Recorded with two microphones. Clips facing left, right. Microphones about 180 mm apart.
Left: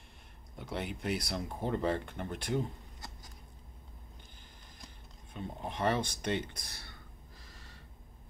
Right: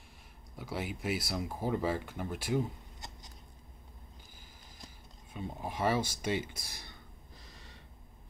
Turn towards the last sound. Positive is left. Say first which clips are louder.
# right 1 dB
turn(degrees=-20)  # may be behind; listen again after turning